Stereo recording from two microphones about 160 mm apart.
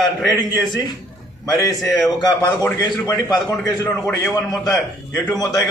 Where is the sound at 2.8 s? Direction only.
20° left (ahead or behind).